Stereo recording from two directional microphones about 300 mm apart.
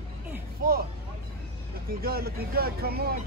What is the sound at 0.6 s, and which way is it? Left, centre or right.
Vehicle, right.